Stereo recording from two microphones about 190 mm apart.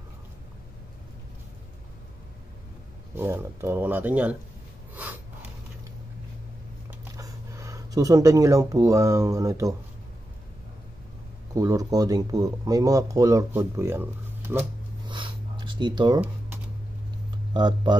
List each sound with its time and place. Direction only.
3.2 s speech: 10° right (ahead or behind)
6.9 s speech: 15° right (ahead or behind)
11.5 s speech: 20° right (ahead or behind)
15.0 s a sound: 25° right (ahead or behind)
17.6 s speech: 20° right (ahead or behind)